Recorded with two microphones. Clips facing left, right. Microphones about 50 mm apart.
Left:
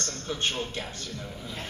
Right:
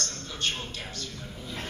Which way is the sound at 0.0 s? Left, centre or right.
Left.